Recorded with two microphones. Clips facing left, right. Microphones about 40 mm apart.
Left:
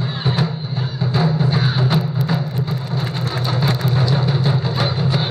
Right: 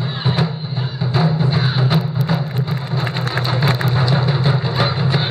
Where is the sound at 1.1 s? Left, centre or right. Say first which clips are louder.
Right 1 dB; centre.